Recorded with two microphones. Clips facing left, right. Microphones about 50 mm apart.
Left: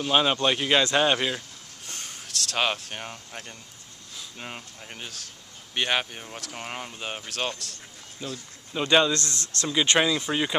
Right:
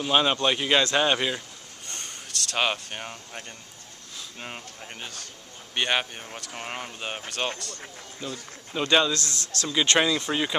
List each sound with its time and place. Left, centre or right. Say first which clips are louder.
0.0 s a man's voice: even; centre
9.1 s a man's voice: left 1 dB; left
9.9 s a man's voice: even; centre